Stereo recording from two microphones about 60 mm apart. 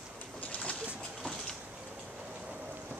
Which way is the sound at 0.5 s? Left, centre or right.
Centre.